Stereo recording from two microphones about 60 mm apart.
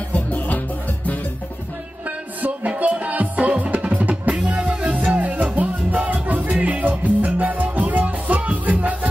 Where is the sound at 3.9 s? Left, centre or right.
Right.